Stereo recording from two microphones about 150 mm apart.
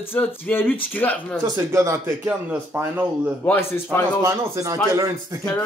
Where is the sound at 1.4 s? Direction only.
20° right (ahead or behind).